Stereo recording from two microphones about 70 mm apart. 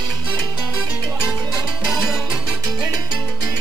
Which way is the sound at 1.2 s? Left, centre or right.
Centre.